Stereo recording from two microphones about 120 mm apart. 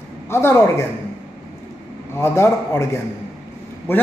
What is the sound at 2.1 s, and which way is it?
Speech, 20° left (ahead or behind).